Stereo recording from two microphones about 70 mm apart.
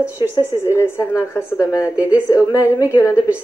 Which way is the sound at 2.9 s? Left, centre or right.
Left.